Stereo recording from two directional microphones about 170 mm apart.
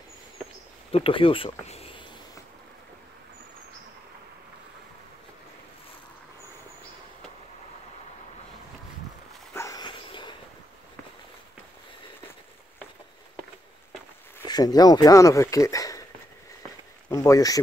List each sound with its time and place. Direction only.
0.9 s speech: 35° left (ahead or behind)
9.5 s dog: 20° left (ahead or behind)
14.4 s speech: 25° left (ahead or behind)
17.1 s speech: 20° left (ahead or behind)